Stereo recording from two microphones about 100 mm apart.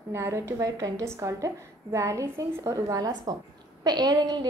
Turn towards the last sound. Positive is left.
turn(degrees=-45)  # may be behind; listen again after turning